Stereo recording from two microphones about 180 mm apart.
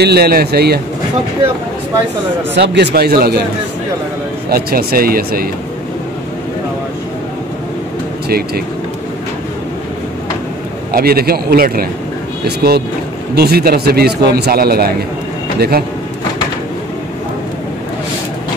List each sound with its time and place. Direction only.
0.0 s a man's voice: 65° right (ahead or behind)
2.5 s a man's voice: 70° right (ahead or behind)
4.5 s a man's voice: 55° right (ahead or behind)
8.3 s a man's voice: 55° right (ahead or behind)
10.9 s a man's voice: 55° right (ahead or behind)